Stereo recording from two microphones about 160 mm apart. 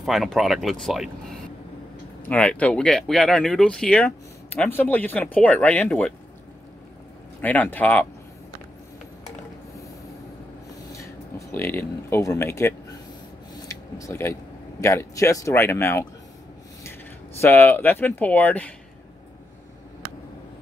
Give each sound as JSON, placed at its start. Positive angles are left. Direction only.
{"t": 0.0, "sound": "speech", "side_deg": 0}
{"t": 7.4, "sound": "speech", "side_deg": 10}
{"t": 10.9, "sound": "speech", "side_deg": 20}
{"t": 13.7, "sound": "a sound", "side_deg": 20}
{"t": 14.8, "sound": "speech", "side_deg": 15}
{"t": 17.4, "sound": "speech", "side_deg": 15}